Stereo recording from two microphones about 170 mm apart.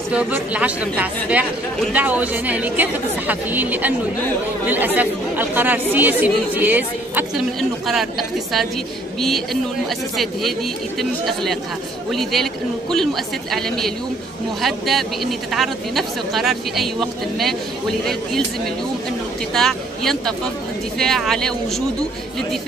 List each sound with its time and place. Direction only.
0.1 s speech: 5° right (ahead or behind)
11.0 s speech: centre (ahead or behind)
19.5 s speech: centre (ahead or behind)